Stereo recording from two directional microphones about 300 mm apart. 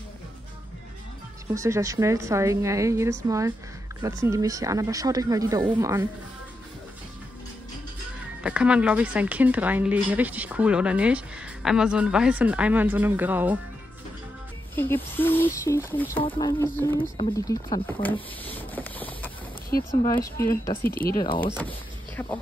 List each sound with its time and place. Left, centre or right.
1.5 s a woman's voice: centre
8.4 s speech: centre
14.8 s speech: centre
17.8 s a sound: centre
20.3 s speech: centre
20.9 s speech: left
21.2 s speech: centre